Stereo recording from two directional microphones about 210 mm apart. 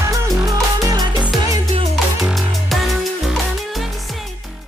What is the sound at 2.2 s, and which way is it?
Music, centre (ahead or behind).